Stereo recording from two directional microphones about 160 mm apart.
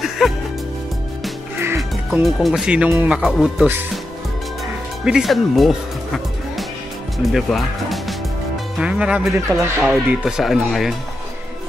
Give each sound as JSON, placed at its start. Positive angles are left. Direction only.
{"t": 0.2, "sound": "music", "side_deg": -5}
{"t": 2.2, "sound": "speech", "side_deg": 0}
{"t": 5.0, "sound": "speech", "side_deg": 0}
{"t": 9.5, "sound": "speech", "side_deg": -15}
{"t": 9.8, "sound": "speech", "side_deg": -5}